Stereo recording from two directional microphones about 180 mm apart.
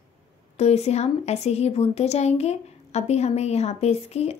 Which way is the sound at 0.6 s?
35° left (ahead or behind).